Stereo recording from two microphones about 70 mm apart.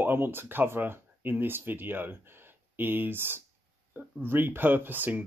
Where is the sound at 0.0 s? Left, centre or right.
Right.